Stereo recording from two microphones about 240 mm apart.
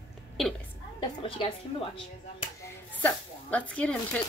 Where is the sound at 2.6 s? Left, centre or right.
Centre.